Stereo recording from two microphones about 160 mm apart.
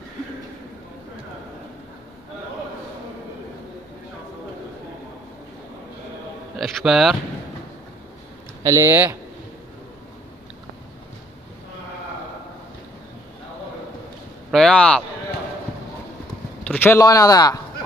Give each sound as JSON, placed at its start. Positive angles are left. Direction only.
{"t": 6.6, "sound": "speech", "side_deg": 0}
{"t": 8.6, "sound": "speech", "side_deg": -20}
{"t": 14.5, "sound": "speech", "side_deg": 5}
{"t": 16.6, "sound": "speech", "side_deg": 10}